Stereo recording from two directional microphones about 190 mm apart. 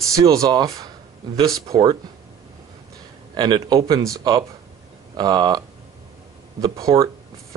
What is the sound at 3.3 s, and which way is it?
Speech, 25° right (ahead or behind).